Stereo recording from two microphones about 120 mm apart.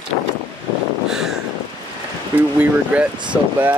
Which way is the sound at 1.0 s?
5° right (ahead or behind).